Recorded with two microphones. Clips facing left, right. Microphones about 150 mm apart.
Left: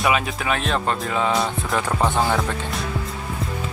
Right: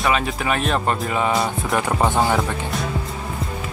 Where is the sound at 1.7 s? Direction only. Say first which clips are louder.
Right 2 dB; 15° right (ahead or behind).